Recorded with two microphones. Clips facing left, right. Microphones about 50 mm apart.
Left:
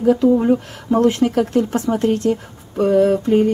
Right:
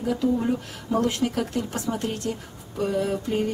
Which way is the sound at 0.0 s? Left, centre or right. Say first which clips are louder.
Left 10 dB; left.